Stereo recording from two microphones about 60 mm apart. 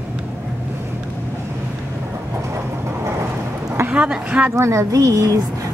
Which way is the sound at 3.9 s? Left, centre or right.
Centre.